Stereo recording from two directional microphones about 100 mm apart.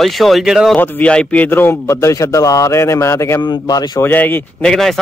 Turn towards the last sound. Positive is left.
turn(degrees=5)  # may be behind; listen again after turning